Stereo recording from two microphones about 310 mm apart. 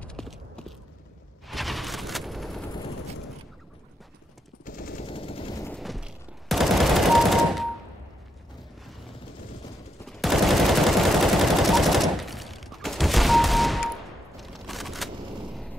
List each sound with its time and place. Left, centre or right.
0.0 s a sound: centre
1.5 s fusillade: centre
4.6 s gunshot: left; by 7.6 s centre
10.0 s machine gun: centre
14.3 s fusillade: centre